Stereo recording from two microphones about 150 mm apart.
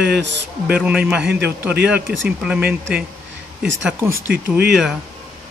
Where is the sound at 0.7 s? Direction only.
5° right (ahead or behind).